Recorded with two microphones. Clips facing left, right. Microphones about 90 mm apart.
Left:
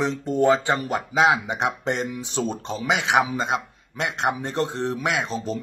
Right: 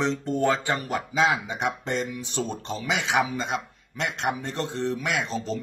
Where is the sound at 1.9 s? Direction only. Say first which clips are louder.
Left 2 dB; 25° left (ahead or behind).